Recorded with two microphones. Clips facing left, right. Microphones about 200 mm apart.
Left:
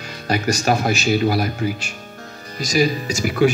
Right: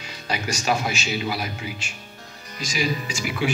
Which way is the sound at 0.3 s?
50° left (ahead or behind).